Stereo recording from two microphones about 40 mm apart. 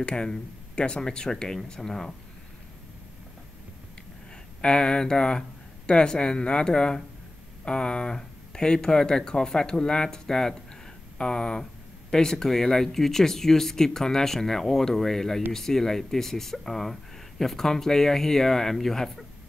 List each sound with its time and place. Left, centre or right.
0.0 s speech: centre
4.6 s speech: left